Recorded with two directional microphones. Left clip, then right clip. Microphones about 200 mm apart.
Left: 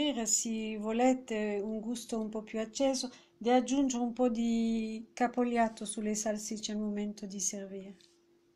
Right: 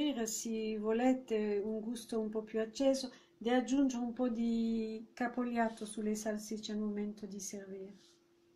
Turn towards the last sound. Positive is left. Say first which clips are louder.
# left 7 dB
turn(degrees=40)  # may be behind; listen again after turning